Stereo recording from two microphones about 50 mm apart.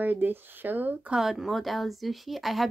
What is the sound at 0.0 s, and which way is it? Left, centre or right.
Speech, right.